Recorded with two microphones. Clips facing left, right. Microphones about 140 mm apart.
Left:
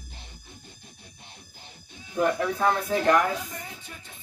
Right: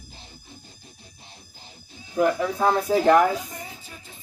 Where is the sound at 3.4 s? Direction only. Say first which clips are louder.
Right 1 dB; centre (ahead or behind).